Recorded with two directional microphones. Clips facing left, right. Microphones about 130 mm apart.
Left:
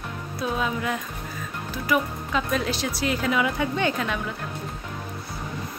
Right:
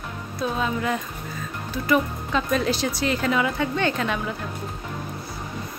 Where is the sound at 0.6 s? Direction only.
5° left (ahead or behind).